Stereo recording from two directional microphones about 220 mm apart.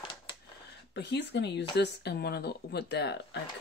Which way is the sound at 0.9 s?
50° left (ahead or behind).